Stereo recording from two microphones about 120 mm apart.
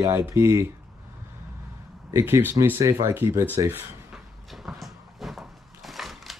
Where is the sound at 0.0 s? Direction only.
20° right (ahead or behind).